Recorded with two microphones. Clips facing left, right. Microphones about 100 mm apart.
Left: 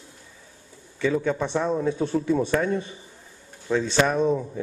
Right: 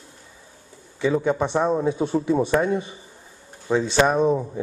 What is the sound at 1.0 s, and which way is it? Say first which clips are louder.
Speech: right 3 dB; 20° right (ahead or behind).